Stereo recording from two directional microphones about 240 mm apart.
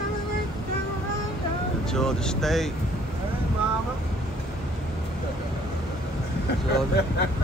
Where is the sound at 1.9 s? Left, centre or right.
Centre.